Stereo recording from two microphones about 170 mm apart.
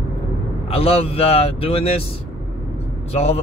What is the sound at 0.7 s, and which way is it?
Speech, 35° left (ahead or behind).